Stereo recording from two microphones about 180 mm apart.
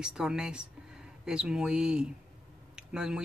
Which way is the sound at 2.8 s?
5° right (ahead or behind).